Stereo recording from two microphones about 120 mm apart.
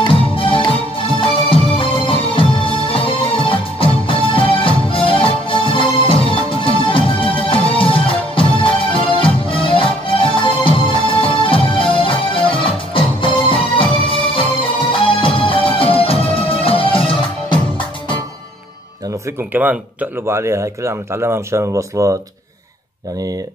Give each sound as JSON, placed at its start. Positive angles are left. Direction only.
{"t": 0.0, "sound": "music", "side_deg": 45}
{"t": 19.5, "sound": "speech", "side_deg": -15}